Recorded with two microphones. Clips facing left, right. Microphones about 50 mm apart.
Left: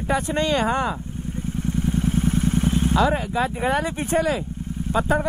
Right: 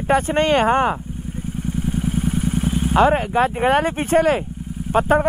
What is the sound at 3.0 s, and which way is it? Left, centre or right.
Speech, right.